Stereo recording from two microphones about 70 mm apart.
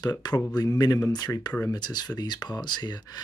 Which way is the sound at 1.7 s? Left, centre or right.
Left.